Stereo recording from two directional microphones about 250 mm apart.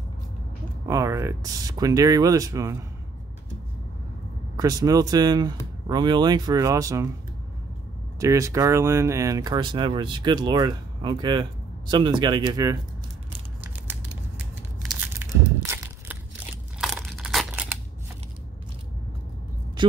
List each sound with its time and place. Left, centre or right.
0.8 s speech: centre
4.6 s speech: centre
8.2 s speech: centre
14.9 s a sound: centre